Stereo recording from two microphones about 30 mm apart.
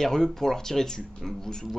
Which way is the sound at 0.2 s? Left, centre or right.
Centre.